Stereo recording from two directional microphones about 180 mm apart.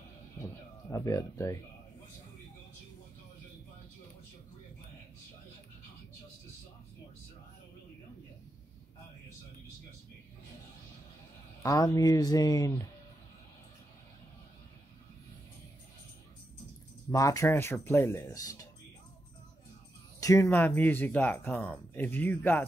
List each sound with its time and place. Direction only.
0.8 s speech: 15° left (ahead or behind)
11.6 s speech: 20° left (ahead or behind)
17.1 s speech: 20° left (ahead or behind)
20.2 s speech: 15° left (ahead or behind)